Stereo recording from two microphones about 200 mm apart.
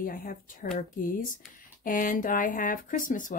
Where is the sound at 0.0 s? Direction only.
45° left (ahead or behind).